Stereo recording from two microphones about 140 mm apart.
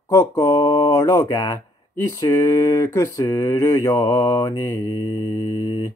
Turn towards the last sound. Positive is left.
turn(degrees=25)  # may be behind; listen again after turning